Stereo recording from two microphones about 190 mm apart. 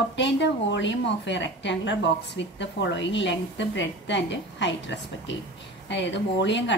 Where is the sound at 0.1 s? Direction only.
70° left (ahead or behind).